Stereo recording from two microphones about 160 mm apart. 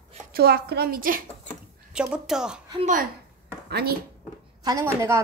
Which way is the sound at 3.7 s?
75° right (ahead or behind).